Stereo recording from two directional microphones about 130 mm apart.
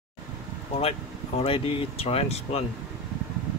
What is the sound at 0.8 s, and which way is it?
Speech, 50° left (ahead or behind).